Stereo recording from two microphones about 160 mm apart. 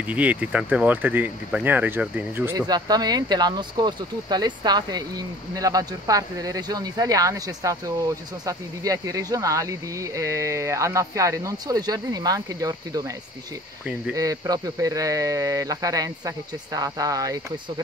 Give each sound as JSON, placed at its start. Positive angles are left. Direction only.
{"t": 0.0, "sound": "speech", "side_deg": -10}
{"t": 2.6, "sound": "speech", "side_deg": -25}
{"t": 14.1, "sound": "speech", "side_deg": -20}